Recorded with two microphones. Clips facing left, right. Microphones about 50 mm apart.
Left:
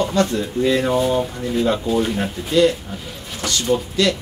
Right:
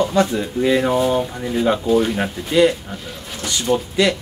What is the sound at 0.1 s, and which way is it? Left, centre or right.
Speech, centre.